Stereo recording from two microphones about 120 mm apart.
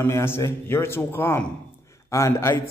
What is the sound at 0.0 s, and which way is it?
Speech, 20° left (ahead or behind).